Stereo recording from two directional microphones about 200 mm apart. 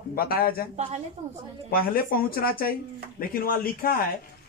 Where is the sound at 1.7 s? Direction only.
45° left (ahead or behind).